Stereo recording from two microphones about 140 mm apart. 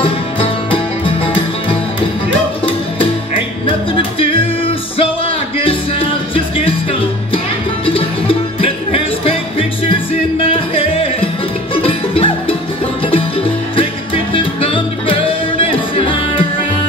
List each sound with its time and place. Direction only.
0.0 s music: 40° left (ahead or behind)
5.6 s music: 40° left (ahead or behind)
14.3 s music: 40° left (ahead or behind)